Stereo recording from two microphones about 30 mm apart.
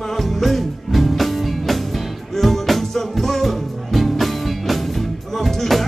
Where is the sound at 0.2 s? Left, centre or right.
Centre.